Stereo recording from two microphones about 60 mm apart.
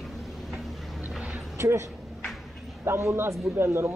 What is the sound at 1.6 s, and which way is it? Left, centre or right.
A man's voice, right.